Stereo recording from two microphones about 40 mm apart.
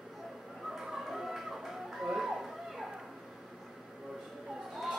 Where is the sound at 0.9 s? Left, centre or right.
Centre.